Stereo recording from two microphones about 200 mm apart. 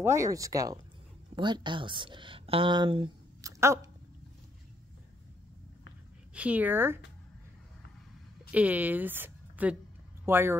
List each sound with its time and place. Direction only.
0.0 s speech: 15° right (ahead or behind)
6.3 s speech: 5° right (ahead or behind)
8.5 s a woman's voice: 5° right (ahead or behind)